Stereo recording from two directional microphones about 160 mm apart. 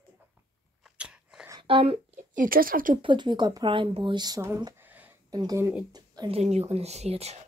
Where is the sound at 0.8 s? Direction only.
5° right (ahead or behind).